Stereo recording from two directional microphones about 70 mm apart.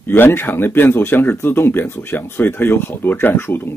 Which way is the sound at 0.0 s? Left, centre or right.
Left.